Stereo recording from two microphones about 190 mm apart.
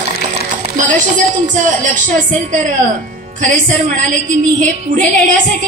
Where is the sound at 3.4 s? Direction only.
45° right (ahead or behind).